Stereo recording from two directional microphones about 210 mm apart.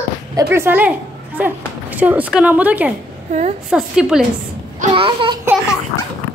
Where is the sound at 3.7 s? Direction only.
5° right (ahead or behind).